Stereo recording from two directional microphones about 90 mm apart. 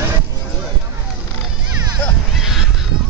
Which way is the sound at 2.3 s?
5° right (ahead or behind).